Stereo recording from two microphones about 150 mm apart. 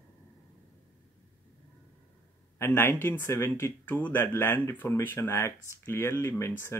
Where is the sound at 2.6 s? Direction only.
15° left (ahead or behind).